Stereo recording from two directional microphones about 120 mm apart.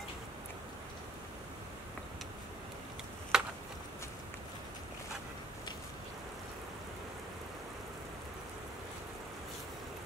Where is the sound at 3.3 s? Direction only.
5° right (ahead or behind).